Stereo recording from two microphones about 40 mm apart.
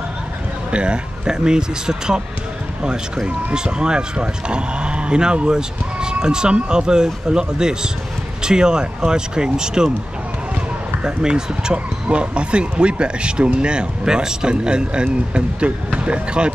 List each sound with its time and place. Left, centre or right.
0.7 s speech: right
11.1 s speech: centre